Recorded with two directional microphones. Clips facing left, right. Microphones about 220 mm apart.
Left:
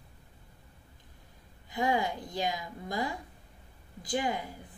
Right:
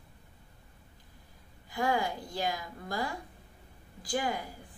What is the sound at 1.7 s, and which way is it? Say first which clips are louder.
A woman's voice: left 1 dB; 20° left (ahead or behind).